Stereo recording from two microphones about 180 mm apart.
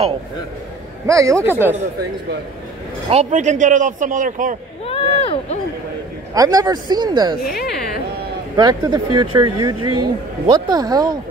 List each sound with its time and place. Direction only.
1.0 s speech: 15° right (ahead or behind)
3.1 s a man's voice: 40° right (ahead or behind)
5.2 s speech: 30° left (ahead or behind)
6.3 s speech: 20° right (ahead or behind)
7.5 s speech: 65° left (ahead or behind)
8.5 s speech: 20° right (ahead or behind)